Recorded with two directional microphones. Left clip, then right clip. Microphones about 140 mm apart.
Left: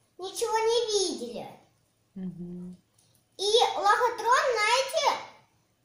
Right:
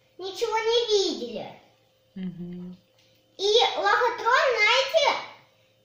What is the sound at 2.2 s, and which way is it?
Speech, 25° left (ahead or behind).